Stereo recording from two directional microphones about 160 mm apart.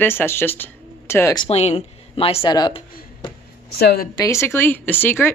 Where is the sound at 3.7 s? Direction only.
85° left.